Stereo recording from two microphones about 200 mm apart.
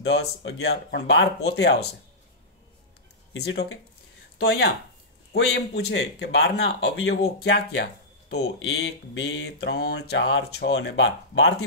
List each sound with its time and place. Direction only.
0.0 s speech: 60° left (ahead or behind)
3.3 s speech: 55° left (ahead or behind)